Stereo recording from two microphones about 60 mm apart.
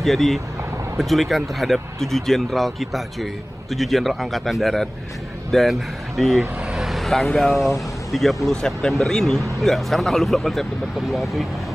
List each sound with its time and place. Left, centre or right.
0.0 s speech: centre
6.6 s vehicle: centre
6.9 s speech: centre